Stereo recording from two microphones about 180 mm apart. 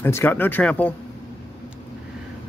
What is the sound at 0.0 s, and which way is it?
Speech, 10° left (ahead or behind).